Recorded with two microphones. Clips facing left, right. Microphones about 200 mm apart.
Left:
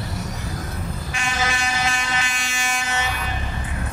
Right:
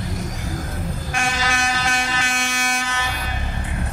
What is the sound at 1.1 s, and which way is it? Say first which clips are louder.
Vehicle: right 2 dB; 50° right (ahead or behind).